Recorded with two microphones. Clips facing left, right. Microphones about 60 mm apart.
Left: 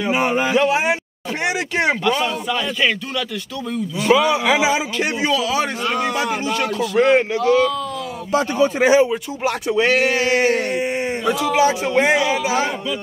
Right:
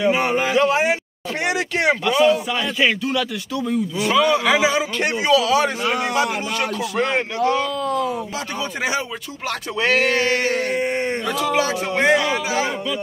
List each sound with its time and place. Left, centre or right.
0.0 s a man's voice: centre
2.0 s a man's voice: centre
4.1 s a man's voice: centre
7.0 s speech: centre
8.3 s a man's voice: left
9.7 s speech: centre
10.7 s a sound: centre
11.9 s speech: centre